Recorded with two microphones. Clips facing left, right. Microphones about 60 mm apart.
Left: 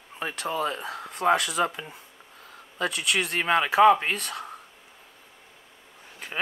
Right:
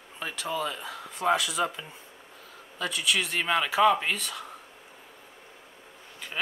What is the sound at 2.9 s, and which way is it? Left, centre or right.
Speech, left.